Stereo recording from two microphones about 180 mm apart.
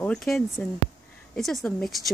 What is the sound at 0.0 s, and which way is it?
Speech, 5° left (ahead or behind).